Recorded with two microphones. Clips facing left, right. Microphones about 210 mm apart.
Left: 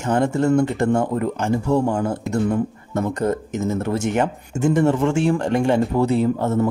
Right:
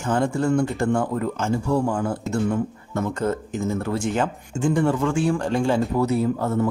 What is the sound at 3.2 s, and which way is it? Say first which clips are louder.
Speech: left 3 dB; 20° left (ahead or behind).